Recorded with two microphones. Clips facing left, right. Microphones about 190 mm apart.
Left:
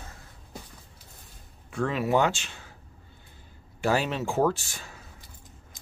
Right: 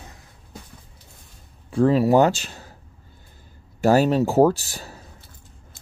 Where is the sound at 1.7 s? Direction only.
35° right (ahead or behind).